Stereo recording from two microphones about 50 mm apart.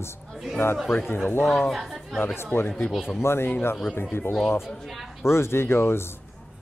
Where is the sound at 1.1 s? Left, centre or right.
Left.